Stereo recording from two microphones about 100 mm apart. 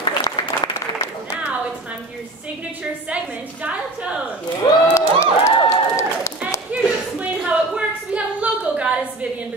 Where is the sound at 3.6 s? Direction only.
15° right (ahead or behind).